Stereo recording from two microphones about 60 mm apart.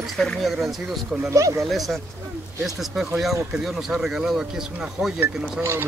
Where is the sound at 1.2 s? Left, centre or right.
Right.